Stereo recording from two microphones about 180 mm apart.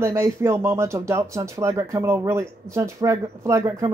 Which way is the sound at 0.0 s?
15° right (ahead or behind).